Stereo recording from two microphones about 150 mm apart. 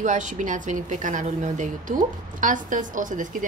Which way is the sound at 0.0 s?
55° right (ahead or behind).